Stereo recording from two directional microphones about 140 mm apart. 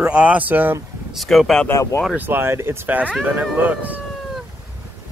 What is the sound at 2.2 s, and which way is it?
Speech, 15° right (ahead or behind).